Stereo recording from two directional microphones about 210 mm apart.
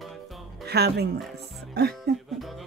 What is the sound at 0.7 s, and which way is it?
Speech, 50° right (ahead or behind).